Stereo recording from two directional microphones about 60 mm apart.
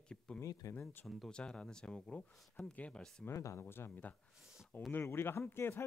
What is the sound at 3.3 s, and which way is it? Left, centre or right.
Speech, left.